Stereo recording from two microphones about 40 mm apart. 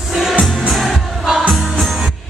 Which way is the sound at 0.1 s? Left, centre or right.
Centre.